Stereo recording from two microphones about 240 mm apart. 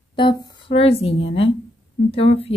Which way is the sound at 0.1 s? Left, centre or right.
Centre.